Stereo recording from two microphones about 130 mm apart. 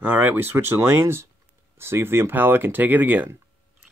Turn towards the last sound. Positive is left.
turn(degrees=-15)  # may be behind; listen again after turning